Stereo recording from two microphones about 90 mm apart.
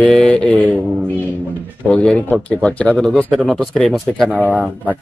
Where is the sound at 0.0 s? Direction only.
10° left (ahead or behind).